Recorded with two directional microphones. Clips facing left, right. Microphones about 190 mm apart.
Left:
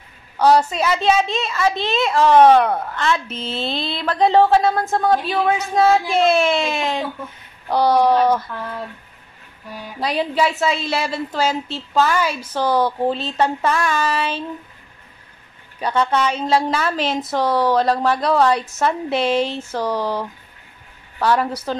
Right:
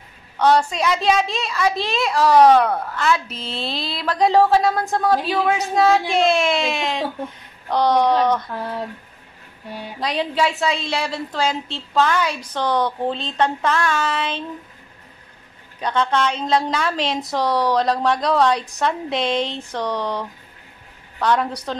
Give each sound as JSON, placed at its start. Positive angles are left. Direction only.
{"t": 0.4, "sound": "a woman's voice", "side_deg": 5}
{"t": 9.7, "sound": "speech", "side_deg": -25}
{"t": 9.9, "sound": "a woman's voice", "side_deg": 5}
{"t": 15.8, "sound": "a woman's voice", "side_deg": 10}